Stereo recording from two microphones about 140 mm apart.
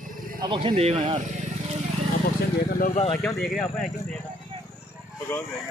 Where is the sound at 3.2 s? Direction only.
5° left (ahead or behind).